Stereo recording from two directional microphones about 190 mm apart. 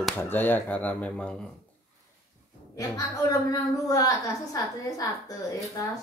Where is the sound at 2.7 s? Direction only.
20° left (ahead or behind).